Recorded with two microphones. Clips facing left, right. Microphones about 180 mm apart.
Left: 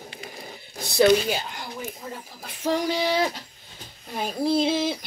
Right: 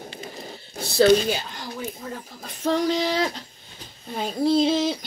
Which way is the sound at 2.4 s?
10° left (ahead or behind).